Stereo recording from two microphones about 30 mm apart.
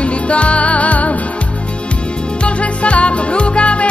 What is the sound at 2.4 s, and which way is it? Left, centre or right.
Music, left.